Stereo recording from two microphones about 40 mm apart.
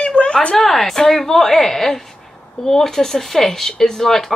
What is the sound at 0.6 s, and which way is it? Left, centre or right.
Speech, centre.